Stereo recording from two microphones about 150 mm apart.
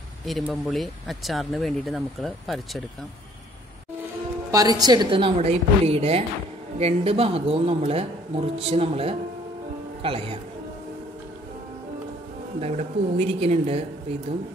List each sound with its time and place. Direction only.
0.2 s speech: centre (ahead or behind)
4.5 s speech: 25° right (ahead or behind)
12.5 s a woman's voice: 45° right (ahead or behind)